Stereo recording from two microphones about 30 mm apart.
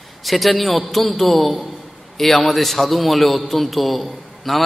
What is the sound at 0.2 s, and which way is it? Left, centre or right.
A man's voice, centre.